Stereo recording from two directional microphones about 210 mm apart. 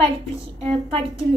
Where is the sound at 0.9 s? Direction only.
25° right (ahead or behind).